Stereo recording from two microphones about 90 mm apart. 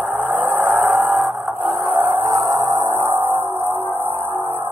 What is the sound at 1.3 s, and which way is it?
Music, 5° right (ahead or behind).